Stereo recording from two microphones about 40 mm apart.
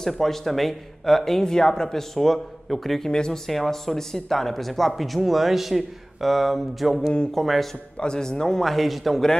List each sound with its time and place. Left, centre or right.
0.0 s speech: centre
3.1 s speech: centre
3.4 s speech: centre
8.0 s speech: centre